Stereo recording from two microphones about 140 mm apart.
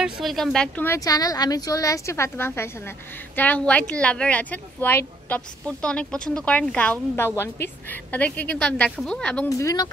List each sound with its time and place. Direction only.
0.0 s speech: centre (ahead or behind)
0.8 s a woman's voice: 25° left (ahead or behind); by 9.5 s 5° left (ahead or behind)
9.5 s a woman's voice: 25° left (ahead or behind)